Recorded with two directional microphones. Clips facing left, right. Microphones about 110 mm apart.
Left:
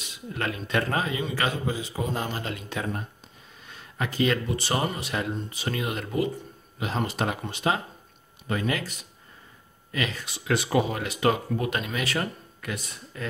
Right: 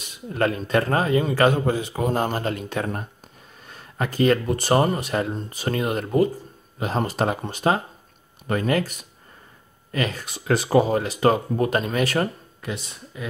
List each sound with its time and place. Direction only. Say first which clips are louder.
0.0 s speech: right 8 dB; 40° right (ahead or behind)
12.6 s speech: right 3 dB; 25° right (ahead or behind)
13.1 s speech: right 1 dB; 15° right (ahead or behind)